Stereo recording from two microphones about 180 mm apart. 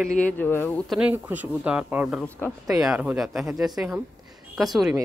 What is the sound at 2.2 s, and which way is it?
Speech, 10° left (ahead or behind).